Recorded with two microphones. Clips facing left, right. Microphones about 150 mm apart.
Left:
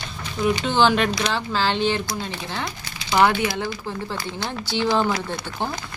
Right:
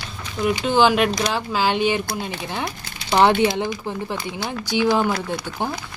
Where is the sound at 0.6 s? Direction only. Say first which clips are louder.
Right 4 dB; 5° right (ahead or behind).